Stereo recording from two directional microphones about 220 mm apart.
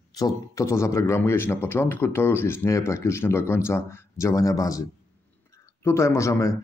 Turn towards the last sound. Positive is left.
turn(degrees=15)  # may be behind; listen again after turning